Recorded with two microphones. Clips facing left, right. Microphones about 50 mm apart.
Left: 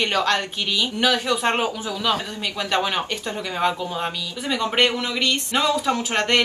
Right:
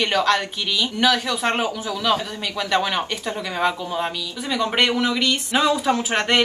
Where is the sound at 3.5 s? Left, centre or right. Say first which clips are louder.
Even; centre.